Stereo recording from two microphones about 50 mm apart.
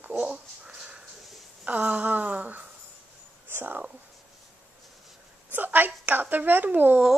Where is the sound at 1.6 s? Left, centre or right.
Right.